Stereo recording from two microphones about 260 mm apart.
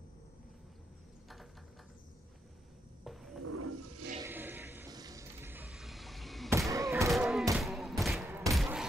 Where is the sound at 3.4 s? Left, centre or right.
Right.